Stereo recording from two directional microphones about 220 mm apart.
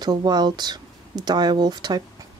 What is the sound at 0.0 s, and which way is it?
Speech, 20° right (ahead or behind).